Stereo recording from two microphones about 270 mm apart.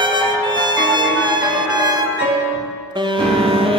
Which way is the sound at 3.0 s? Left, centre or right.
Centre.